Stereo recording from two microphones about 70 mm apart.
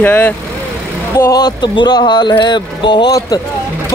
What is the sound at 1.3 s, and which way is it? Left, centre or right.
Speech, left.